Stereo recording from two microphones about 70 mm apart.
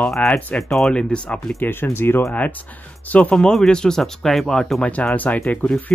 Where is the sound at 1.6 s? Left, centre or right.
Left.